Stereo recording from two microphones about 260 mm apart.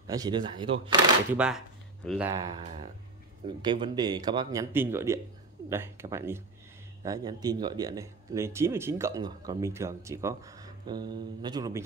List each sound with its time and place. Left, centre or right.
0.0 s speech: centre
1.3 s speech: centre